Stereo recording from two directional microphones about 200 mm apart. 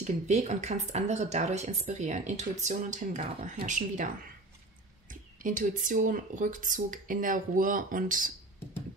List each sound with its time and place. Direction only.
0.0 s speech: 35° right (ahead or behind)